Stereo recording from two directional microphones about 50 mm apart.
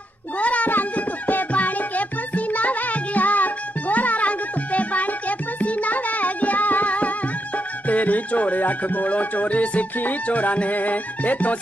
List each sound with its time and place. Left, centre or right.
0.4 s music: left